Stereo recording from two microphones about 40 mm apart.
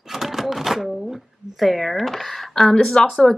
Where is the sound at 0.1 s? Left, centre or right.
Centre.